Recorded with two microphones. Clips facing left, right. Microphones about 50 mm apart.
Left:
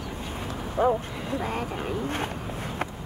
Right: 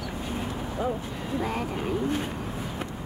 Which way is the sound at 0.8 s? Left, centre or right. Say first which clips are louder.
Left 7 dB; left.